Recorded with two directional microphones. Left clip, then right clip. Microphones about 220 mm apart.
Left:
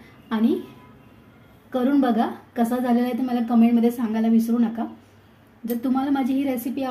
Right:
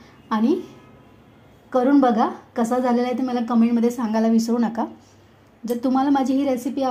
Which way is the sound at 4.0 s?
30° right (ahead or behind).